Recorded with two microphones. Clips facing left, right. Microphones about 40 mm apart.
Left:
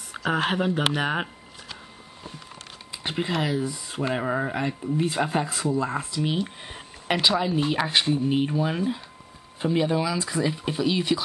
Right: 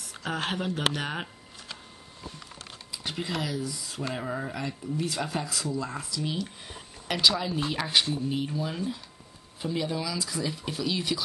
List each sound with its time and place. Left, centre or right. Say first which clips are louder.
0.2 s speech: left 7 dB; centre
2.9 s speech: left 5 dB; left